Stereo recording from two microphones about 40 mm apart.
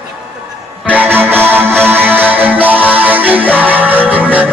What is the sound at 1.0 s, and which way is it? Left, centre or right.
Music, right.